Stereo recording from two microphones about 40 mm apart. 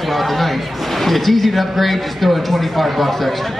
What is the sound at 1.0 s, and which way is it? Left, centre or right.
Speech, centre.